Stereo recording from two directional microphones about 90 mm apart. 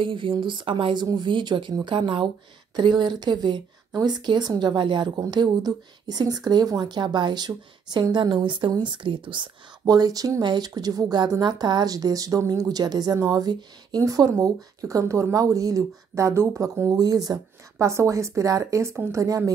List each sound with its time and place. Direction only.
0.0 s speech: 75° right (ahead or behind)
1.1 s speech: 60° right (ahead or behind)
5.1 s speech: 45° right (ahead or behind); by 9.5 s 65° right (ahead or behind)
9.8 s speech: 45° right (ahead or behind)
10.7 s speech: 40° right (ahead or behind)